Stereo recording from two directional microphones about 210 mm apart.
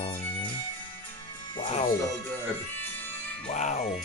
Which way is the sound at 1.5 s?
25° left (ahead or behind).